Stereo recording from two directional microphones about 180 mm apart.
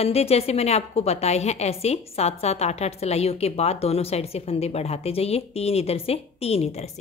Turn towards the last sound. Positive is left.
turn(degrees=35)  # may be behind; listen again after turning